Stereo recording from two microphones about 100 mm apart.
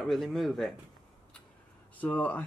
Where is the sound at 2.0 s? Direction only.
15° left (ahead or behind).